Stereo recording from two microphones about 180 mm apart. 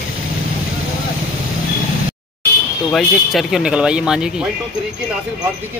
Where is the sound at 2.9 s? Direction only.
Centre (ahead or behind).